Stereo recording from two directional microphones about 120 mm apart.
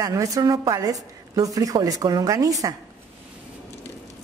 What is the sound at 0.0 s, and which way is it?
A woman's voice, 30° right (ahead or behind).